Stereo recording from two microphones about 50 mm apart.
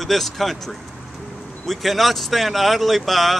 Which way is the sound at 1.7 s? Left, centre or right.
Centre.